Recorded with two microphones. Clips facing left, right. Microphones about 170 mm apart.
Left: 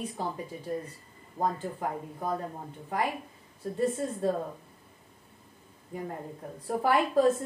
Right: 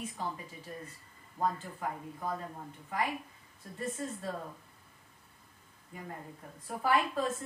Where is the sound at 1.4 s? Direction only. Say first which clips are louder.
Left 4 dB; 35° left (ahead or behind).